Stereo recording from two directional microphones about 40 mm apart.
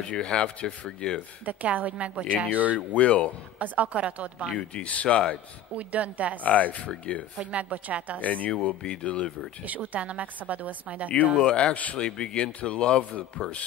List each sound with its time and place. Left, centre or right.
0.1 s speech: left
1.4 s a woman's voice: right
2.9 s speech: left
3.5 s a woman's voice: right
4.6 s speech: left
5.8 s a woman's voice: right
6.4 s speech: left
7.5 s a woman's voice: right
8.2 s speech: left
9.8 s a woman's voice: right
11.3 s speech: left
12.0 s speech: left